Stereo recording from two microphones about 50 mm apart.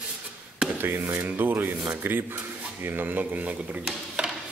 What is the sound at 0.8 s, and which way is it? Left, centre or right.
Rub, right.